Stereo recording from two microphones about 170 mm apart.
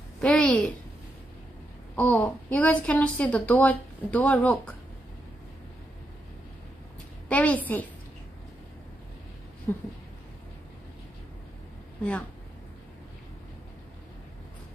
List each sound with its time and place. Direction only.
0.2 s a woman's voice: 5° left (ahead or behind)
2.0 s a woman's voice: 10° left (ahead or behind)
7.2 s a woman's voice: 10° left (ahead or behind)
9.7 s a woman's voice: 15° left (ahead or behind)
12.0 s speech: 5° left (ahead or behind)